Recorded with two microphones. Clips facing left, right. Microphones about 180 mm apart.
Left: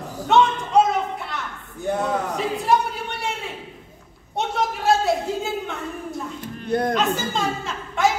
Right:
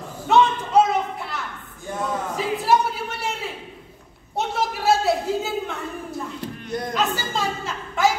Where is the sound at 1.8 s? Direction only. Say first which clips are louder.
Left 6 dB; 65° left (ahead or behind).